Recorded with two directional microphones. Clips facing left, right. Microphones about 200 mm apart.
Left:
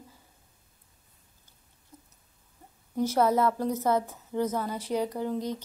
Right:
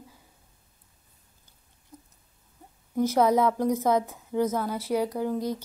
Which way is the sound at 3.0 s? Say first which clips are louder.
Right 2 dB; 15° right (ahead or behind).